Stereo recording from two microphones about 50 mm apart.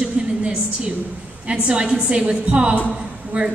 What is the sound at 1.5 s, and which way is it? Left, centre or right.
A woman's voice, centre.